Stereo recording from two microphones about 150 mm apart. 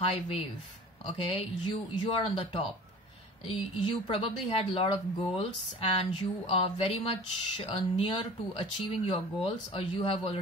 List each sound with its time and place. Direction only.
1.0 s speech: 35° left (ahead or behind)